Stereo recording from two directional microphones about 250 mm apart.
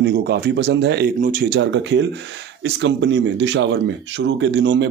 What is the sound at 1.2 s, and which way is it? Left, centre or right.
Speech, right.